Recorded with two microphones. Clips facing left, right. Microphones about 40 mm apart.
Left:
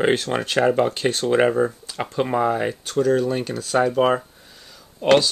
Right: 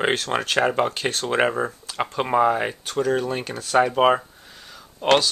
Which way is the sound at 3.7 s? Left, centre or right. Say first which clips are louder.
Right 1 dB; right.